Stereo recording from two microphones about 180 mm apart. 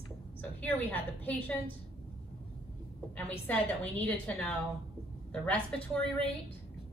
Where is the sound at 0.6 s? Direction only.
10° left (ahead or behind).